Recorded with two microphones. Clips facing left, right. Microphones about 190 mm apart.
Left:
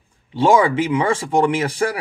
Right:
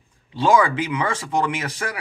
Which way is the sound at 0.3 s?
25° left (ahead or behind).